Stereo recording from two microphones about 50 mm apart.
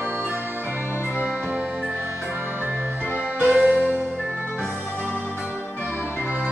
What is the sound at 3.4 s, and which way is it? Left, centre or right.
Music, right.